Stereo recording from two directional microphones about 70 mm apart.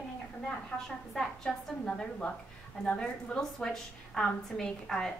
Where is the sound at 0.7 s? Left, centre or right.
Centre.